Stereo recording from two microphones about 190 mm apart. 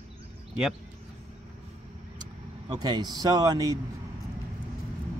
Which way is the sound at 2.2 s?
20° right (ahead or behind).